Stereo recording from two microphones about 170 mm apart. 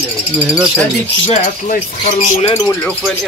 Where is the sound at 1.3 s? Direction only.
45° left (ahead or behind).